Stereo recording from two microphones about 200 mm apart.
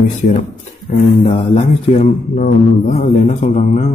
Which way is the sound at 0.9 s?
25° left (ahead or behind).